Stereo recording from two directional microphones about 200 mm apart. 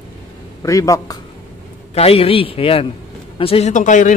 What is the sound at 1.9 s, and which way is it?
A man's voice, 30° left (ahead or behind).